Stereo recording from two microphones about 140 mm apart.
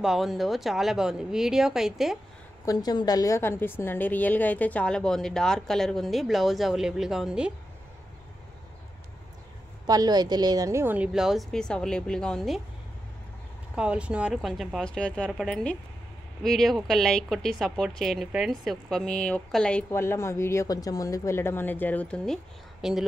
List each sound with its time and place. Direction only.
0.0 s a woman's voice: centre (ahead or behind)
2.6 s a woman's voice: 25° left (ahead or behind); by 7.5 s 5° right (ahead or behind)
9.8 s a woman's voice: 30° right (ahead or behind); by 12.6 s centre (ahead or behind)
13.7 s a woman's voice: 10° right (ahead or behind)
19.9 s speech: 20° left (ahead or behind); by 23.0 s centre (ahead or behind)